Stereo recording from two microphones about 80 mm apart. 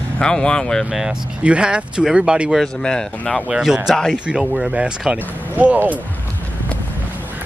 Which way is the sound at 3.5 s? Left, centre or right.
Centre.